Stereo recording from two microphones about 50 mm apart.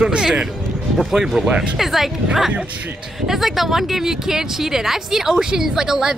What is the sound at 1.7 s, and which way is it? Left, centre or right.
Speech, centre.